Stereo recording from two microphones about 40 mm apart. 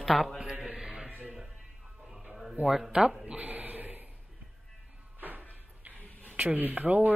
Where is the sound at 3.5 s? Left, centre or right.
Right.